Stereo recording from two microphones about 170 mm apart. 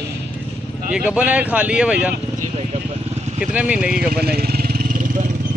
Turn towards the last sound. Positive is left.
turn(degrees=-55)  # may be behind; listen again after turning